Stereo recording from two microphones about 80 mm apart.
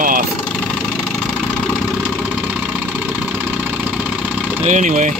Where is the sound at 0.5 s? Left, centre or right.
Centre.